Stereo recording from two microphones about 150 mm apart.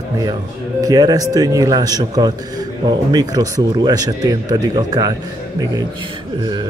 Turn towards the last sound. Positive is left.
turn(degrees=-25)  # may be behind; listen again after turning